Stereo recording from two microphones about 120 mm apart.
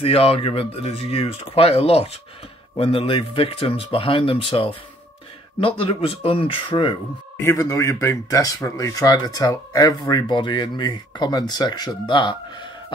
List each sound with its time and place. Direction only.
0.0 s speech: 50° left (ahead or behind)
7.4 s speech: 25° left (ahead or behind); by 12.6 s 40° left (ahead or behind)